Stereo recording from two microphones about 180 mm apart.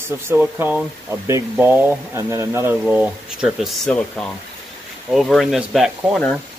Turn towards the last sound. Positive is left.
turn(degrees=0)  # may be behind; listen again after turning